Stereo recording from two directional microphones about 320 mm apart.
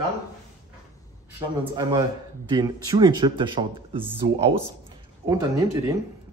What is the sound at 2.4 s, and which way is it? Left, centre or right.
Speech, centre.